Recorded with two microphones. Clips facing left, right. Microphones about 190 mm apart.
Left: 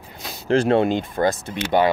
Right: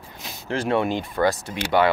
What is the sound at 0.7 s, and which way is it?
Speech, 25° left (ahead or behind).